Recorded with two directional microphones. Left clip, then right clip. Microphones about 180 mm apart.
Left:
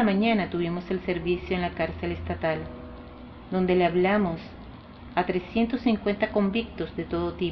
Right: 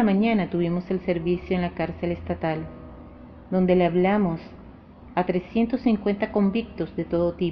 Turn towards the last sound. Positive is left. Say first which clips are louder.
# right 5 dB
turn(degrees=-55)  # may be behind; listen again after turning